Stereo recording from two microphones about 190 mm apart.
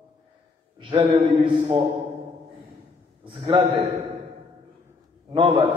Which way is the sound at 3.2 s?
25° right (ahead or behind).